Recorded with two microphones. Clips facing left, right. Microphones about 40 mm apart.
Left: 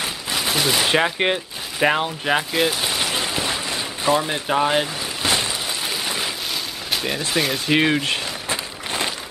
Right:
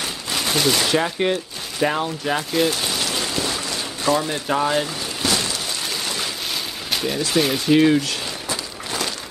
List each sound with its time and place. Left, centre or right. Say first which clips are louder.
0.0 s fusillade: left 1 dB; centre
0.8 s speech: left 1 dB; left
2.5 s rain: even; centre
7.1 s speech: right 3 dB; left
7.3 s speech: right 3 dB; centre
7.7 s a sound: right 3 dB; left